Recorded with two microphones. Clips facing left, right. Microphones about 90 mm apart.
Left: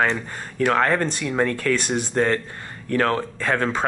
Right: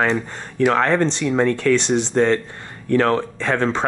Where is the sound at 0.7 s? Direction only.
5° left (ahead or behind).